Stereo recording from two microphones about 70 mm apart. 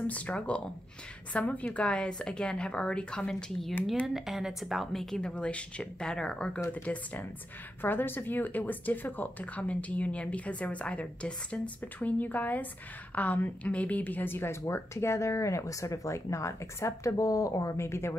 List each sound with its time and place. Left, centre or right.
0.0 s a woman's voice: centre
4.1 s a woman's voice: centre; by 18.1 s left